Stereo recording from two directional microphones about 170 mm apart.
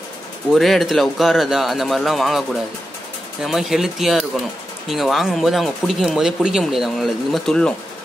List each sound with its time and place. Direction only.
0.5 s speech: centre (ahead or behind)
3.4 s speech: centre (ahead or behind)